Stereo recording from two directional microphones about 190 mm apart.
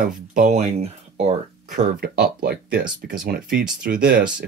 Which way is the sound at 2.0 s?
55° right (ahead or behind).